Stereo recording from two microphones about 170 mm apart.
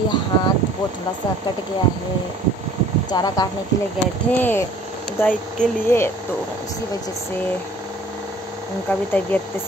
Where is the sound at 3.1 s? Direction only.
25° left (ahead or behind).